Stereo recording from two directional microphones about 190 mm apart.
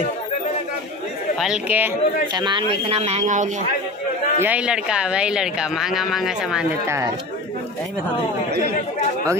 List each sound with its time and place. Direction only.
1.3 s speech: 5° right (ahead or behind)
2.3 s speech: 25° right (ahead or behind)
4.4 s speech: 5° right (ahead or behind)
6.9 s speech: 15° right (ahead or behind)